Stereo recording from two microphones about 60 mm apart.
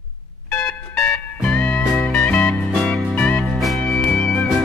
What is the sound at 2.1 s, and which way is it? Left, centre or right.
Music, left.